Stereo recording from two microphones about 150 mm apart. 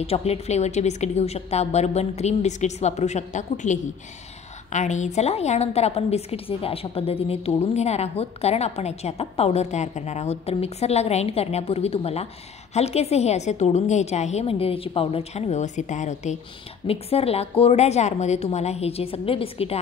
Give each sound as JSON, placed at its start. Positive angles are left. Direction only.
{"t": 0.0, "sound": "a woman's voice", "side_deg": 45}
{"t": 16.8, "sound": "a woman's voice", "side_deg": 40}